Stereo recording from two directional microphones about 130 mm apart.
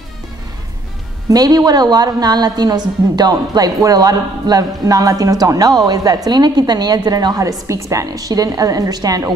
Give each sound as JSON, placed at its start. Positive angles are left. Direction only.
{"t": 1.3, "sound": "a woman's voice", "side_deg": -30}